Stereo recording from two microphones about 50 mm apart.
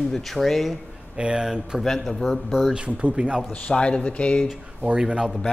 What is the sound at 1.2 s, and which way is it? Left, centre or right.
Speech, centre.